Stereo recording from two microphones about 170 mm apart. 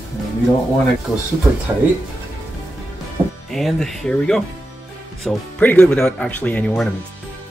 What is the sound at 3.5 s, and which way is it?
Speech, centre (ahead or behind).